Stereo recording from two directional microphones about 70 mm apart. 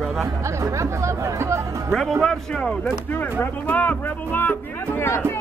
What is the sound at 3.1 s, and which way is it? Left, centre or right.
Speech, left.